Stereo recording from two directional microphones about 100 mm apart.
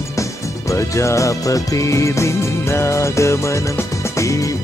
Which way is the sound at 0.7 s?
30° left (ahead or behind).